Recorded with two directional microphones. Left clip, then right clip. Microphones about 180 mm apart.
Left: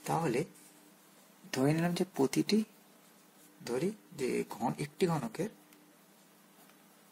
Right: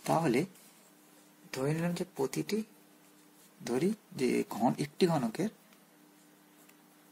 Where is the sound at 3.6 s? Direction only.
30° right (ahead or behind).